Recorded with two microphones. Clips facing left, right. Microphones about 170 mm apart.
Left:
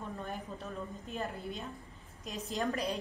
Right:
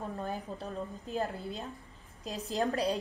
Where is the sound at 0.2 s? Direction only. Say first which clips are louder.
Right 4 dB; 35° right (ahead or behind).